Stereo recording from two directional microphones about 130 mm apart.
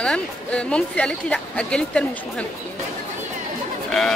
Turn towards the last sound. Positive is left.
turn(degrees=0)  # may be behind; listen again after turning